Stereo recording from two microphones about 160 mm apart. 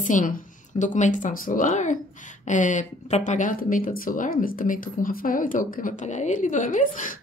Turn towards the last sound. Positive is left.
turn(degrees=55)  # may be behind; listen again after turning